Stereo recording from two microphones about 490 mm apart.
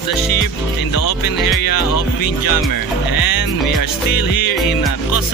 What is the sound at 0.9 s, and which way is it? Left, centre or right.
Music, left.